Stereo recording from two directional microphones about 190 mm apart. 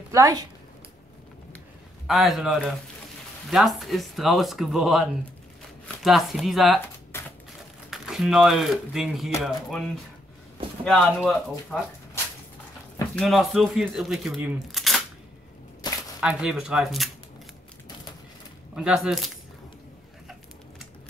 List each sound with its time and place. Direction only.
0.1 s a woman's voice: 20° right (ahead or behind)
2.0 s speech: centre (ahead or behind)
7.1 s a sound: 15° left (ahead or behind)
7.9 s speech: centre (ahead or behind)
13.1 s speech: centre (ahead or behind)
16.2 s speech: 5° right (ahead or behind)
18.8 s speech: 5° right (ahead or behind)